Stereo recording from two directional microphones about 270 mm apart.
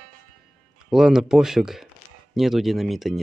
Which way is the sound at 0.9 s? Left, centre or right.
Centre.